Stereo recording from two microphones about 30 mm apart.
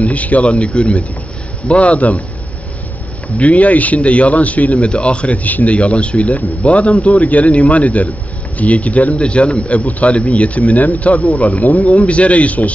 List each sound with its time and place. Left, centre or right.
0.0 s speech: left
3.3 s speech: left
4.7 s speech: left
5.4 s speech: left
5.8 s speech: left
9.2 s speech: left
12.0 s speech: left